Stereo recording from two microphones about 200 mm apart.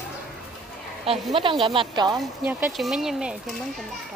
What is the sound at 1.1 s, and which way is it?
Speech, centre (ahead or behind).